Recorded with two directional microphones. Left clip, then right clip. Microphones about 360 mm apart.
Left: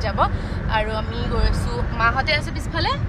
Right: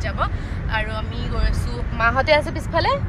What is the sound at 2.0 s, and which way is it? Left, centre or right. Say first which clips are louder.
Speech: right 3 dB; centre.